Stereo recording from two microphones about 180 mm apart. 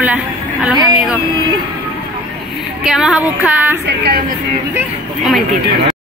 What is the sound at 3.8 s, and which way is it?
Speech, 65° right (ahead or behind).